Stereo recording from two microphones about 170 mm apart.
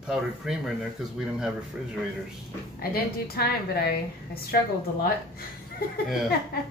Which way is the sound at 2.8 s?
65° left (ahead or behind).